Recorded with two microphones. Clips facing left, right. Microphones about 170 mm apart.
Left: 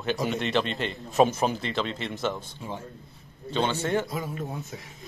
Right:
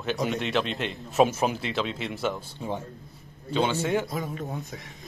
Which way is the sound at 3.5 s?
10° right (ahead or behind).